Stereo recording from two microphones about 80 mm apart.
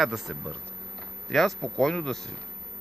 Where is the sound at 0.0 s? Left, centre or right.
Centre.